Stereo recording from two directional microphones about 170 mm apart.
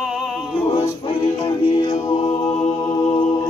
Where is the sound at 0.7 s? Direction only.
30° left (ahead or behind).